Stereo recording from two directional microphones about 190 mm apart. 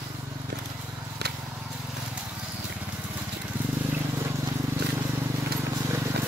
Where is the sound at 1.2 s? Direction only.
60° right (ahead or behind).